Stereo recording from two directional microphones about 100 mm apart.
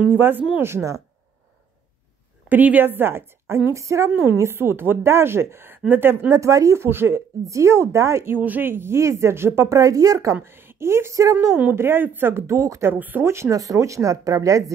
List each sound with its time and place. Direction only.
0.0 s speech: 20° right (ahead or behind)
2.5 s speech: 15° right (ahead or behind)
6.3 s speech: 35° right (ahead or behind)
11.5 s speech: 20° right (ahead or behind)
12.9 s speech: 20° right (ahead or behind); by 14.6 s 35° right (ahead or behind)